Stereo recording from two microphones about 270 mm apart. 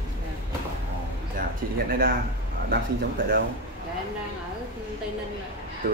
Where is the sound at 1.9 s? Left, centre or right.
Right.